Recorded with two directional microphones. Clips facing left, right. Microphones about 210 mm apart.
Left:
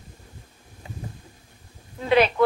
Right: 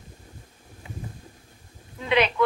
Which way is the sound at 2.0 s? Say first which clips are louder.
Left 3 dB; 40° left (ahead or behind).